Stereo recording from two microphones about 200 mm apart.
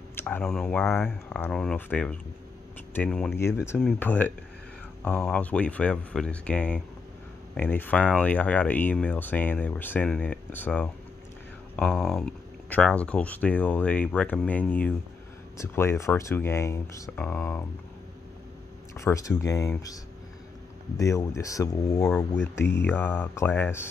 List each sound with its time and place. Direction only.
0.1 s speech: 10° left (ahead or behind)
18.9 s speech: 15° left (ahead or behind)
21.0 s speech: 15° left (ahead or behind)